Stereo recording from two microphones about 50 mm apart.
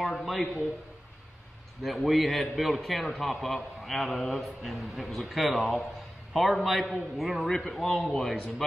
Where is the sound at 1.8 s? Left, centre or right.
Centre.